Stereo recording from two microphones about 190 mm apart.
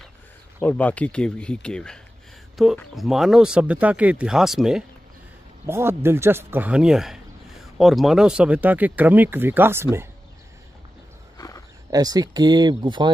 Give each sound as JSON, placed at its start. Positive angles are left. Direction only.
{"t": 0.6, "sound": "speech", "side_deg": 10}
{"t": 5.7, "sound": "speech", "side_deg": -10}
{"t": 11.3, "sound": "wild animals", "side_deg": 20}
{"t": 11.9, "sound": "speech", "side_deg": -20}